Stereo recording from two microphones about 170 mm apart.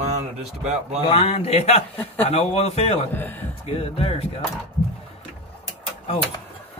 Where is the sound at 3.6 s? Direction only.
35° left (ahead or behind).